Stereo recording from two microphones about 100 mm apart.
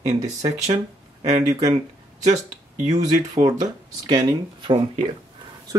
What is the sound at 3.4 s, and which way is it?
Speech, 40° right (ahead or behind).